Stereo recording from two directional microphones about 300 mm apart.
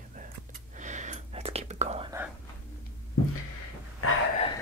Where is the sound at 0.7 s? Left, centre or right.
Right.